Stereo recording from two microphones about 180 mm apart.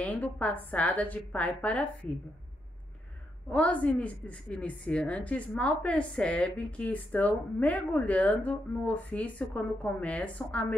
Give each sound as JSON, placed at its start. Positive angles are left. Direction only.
{"t": 0.0, "sound": "a woman's voice", "side_deg": 10}
{"t": 3.4, "sound": "a woman's voice", "side_deg": 10}